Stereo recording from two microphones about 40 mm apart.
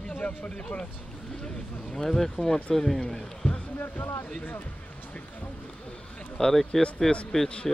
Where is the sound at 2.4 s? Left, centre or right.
Left.